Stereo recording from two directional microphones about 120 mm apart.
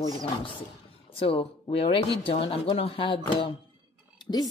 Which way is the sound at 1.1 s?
50° left (ahead or behind).